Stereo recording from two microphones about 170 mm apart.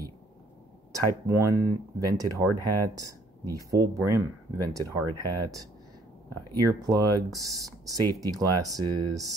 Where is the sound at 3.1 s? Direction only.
20° right (ahead or behind).